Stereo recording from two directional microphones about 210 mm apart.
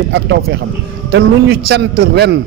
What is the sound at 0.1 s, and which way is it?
Speech, 55° right (ahead or behind).